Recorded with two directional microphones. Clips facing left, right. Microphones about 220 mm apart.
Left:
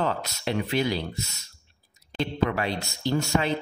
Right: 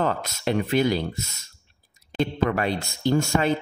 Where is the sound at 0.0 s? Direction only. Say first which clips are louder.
Right 3 dB; 50° right (ahead or behind).